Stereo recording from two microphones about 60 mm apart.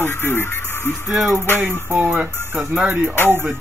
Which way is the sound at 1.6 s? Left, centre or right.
Right.